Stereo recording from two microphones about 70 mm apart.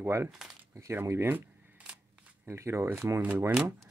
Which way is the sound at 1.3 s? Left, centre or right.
Centre.